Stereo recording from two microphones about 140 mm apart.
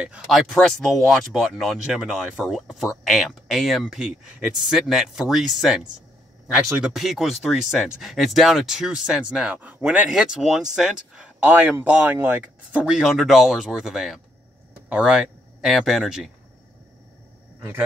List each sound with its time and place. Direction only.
0.0 s speech: 5° right (ahead or behind)
6.8 s speech: centre (ahead or behind)
17.6 s a man's voice: 15° right (ahead or behind)